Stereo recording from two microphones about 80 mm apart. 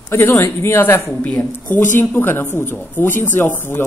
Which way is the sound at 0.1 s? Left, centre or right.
Left.